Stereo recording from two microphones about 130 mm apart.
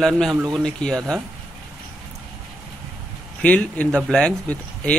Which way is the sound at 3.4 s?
10° left (ahead or behind).